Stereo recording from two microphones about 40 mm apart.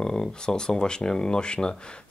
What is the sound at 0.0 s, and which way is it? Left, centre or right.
Speech, centre.